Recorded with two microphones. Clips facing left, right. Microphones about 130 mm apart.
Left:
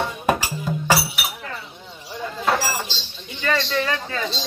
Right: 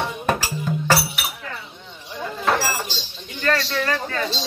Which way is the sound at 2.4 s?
10° left (ahead or behind).